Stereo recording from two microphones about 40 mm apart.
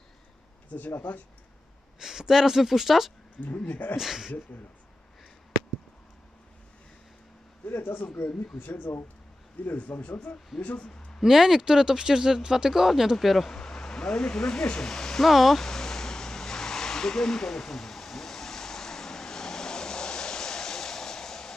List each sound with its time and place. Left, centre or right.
1.1 s speech: left
2.0 s speech: centre
3.3 s a man's voice: left
3.9 s speech: centre
7.8 s speech: left
9.8 s a man's voice: left
11.2 s speech: centre
13.5 s speech: centre
15.2 s speech: centre
15.6 s a sound: centre